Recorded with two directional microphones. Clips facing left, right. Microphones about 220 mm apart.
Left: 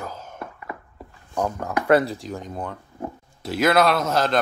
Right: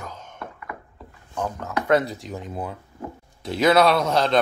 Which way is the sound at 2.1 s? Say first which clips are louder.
Even; centre (ahead or behind).